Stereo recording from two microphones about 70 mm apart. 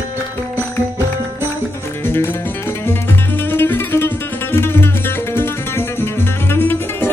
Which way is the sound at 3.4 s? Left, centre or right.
Left.